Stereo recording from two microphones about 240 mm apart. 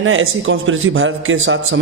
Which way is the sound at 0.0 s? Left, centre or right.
Right.